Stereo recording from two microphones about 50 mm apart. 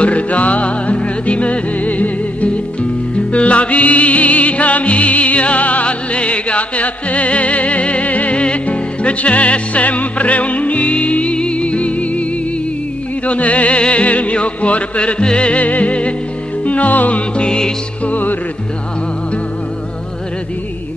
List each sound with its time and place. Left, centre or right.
0.0 s music: left
17.4 s music: centre
18.0 s music: left